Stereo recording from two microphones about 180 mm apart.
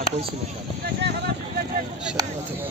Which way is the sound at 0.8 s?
65° right (ahead or behind).